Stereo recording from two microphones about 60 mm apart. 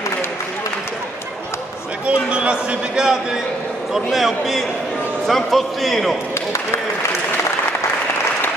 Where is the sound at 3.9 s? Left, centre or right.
Centre.